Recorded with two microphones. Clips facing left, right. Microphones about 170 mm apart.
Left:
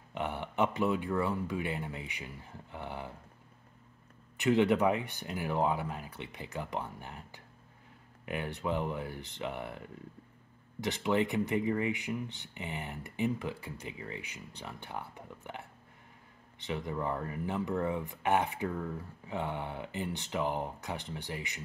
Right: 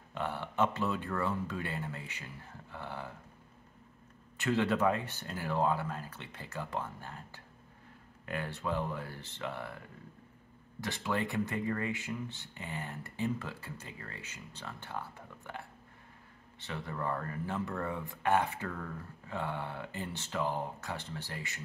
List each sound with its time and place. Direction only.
0.1 s speech: 15° left (ahead or behind)
4.4 s speech: 15° left (ahead or behind)
10.8 s speech: 20° left (ahead or behind)